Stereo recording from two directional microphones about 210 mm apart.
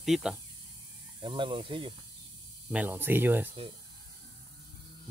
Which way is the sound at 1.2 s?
25° right (ahead or behind).